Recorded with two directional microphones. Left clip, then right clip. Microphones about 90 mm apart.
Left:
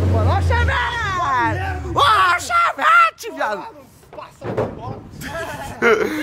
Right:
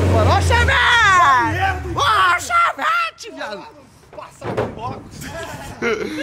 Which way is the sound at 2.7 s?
25° left (ahead or behind).